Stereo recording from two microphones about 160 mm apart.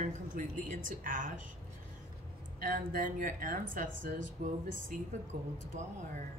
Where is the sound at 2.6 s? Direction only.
60° right (ahead or behind).